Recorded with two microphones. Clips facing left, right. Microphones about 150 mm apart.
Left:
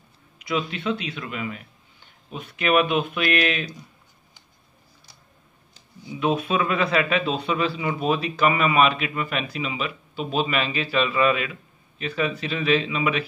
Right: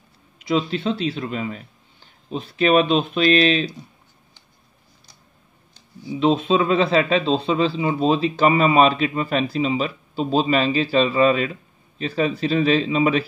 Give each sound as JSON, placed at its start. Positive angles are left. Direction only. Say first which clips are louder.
{"t": 0.4, "sound": "a man's voice", "louder": "right 5 dB", "side_deg": -30}
{"t": 6.1, "sound": "a man's voice", "louder": "right 5 dB", "side_deg": -25}